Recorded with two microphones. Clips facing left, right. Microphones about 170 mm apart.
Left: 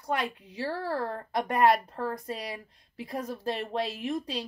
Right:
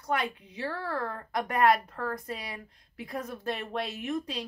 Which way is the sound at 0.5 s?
30° left (ahead or behind).